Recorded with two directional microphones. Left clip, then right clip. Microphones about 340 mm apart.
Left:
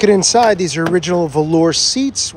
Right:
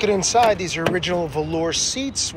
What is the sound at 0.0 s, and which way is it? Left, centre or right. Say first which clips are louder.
Speech: left 6 dB; left.